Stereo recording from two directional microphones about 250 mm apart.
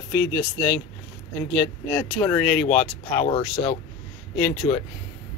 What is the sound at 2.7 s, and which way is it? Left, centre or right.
Speech, left.